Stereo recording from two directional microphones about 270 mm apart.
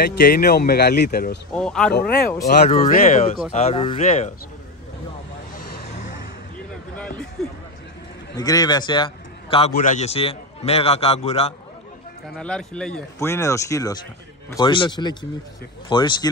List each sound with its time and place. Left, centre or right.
0.0 s speech: left
1.5 s speech: centre
2.9 s a man's voice: left
7.4 s speech: centre
8.4 s a man's voice: centre
12.4 s speech: centre